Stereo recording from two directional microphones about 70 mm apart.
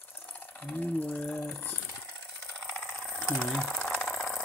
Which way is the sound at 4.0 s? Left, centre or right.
Centre.